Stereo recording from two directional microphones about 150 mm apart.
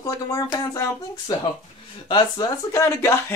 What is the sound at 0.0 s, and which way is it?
Speech, 20° left (ahead or behind).